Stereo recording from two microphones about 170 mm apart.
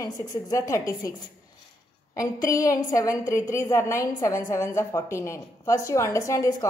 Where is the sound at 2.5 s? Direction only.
20° left (ahead or behind).